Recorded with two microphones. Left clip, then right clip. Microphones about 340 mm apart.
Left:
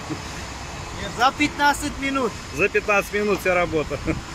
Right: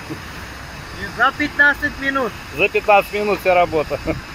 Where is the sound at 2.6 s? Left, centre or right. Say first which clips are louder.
Right 6 dB; right.